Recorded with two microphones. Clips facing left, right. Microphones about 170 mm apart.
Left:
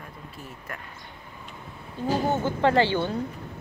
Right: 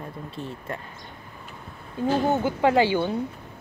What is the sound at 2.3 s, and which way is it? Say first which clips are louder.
Speech: left 1 dB; 10° right (ahead or behind).